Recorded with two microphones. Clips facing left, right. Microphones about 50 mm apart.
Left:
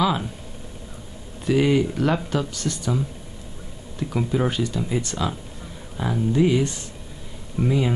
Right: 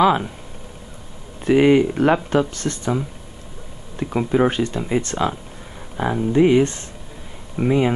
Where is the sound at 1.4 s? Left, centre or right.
Right.